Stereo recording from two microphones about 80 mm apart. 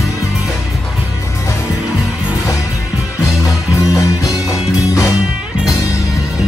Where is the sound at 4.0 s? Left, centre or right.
Left.